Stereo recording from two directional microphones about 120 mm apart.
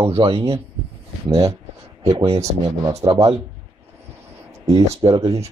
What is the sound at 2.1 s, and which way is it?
Speech, 55° right (ahead or behind).